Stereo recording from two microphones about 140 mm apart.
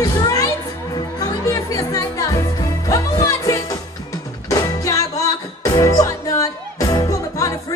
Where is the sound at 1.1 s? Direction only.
25° left (ahead or behind).